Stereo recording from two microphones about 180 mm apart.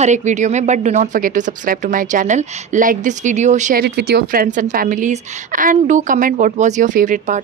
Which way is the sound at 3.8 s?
60° right (ahead or behind).